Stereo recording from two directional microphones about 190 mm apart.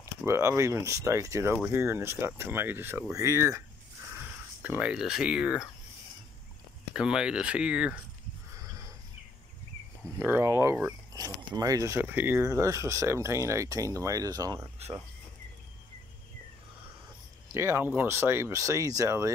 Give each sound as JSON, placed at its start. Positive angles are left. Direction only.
{"t": 0.0, "sound": "speech", "side_deg": -15}
{"t": 6.9, "sound": "speech", "side_deg": -5}
{"t": 8.5, "sound": "a sound", "side_deg": -20}
{"t": 10.1, "sound": "speech", "side_deg": -10}
{"t": 17.5, "sound": "speech", "side_deg": -15}